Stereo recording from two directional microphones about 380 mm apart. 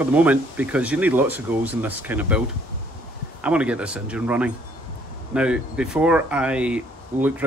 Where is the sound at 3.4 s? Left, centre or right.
Centre.